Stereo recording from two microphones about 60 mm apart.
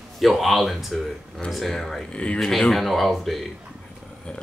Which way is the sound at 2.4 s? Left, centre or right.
Centre.